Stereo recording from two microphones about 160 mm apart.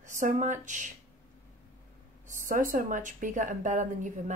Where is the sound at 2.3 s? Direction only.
55° right (ahead or behind).